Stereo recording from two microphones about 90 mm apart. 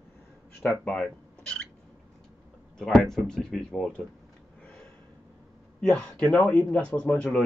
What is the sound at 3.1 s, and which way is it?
Speech, 5° left (ahead or behind).